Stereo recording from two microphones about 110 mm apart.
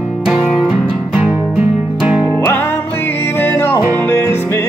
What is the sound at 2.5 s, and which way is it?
Music, 20° left (ahead or behind).